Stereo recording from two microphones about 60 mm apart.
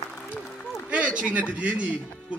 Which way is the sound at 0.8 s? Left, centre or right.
Right.